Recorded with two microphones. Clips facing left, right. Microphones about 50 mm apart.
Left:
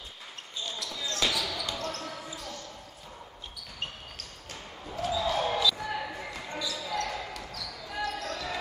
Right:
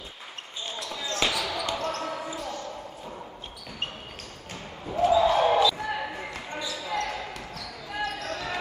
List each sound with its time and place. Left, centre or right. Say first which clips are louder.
0.7 s basketball bounce: right 3 dB; right
4.8 s basketball bounce: right 9 dB; right